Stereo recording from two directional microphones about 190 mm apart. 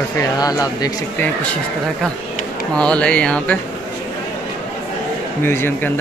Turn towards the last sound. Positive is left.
turn(degrees=10)  # may be behind; listen again after turning